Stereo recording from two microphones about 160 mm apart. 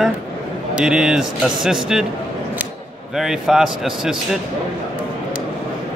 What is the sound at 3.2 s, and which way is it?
A man's voice, centre (ahead or behind).